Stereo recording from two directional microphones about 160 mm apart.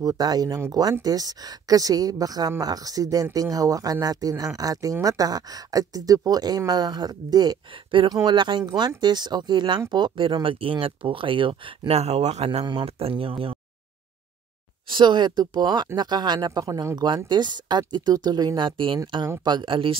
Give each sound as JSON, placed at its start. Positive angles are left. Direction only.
{"t": 0.0, "sound": "speech", "side_deg": -25}
{"t": 12.4, "sound": "speech", "side_deg": -30}
{"t": 14.9, "sound": "speech", "side_deg": -30}
{"t": 18.9, "sound": "speech", "side_deg": -20}